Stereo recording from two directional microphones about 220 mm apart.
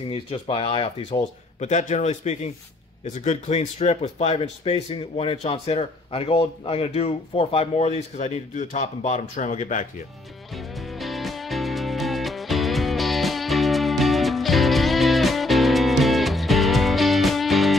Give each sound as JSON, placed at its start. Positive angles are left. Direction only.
{"t": 0.1, "sound": "speech", "side_deg": 25}
{"t": 10.5, "sound": "music", "side_deg": 0}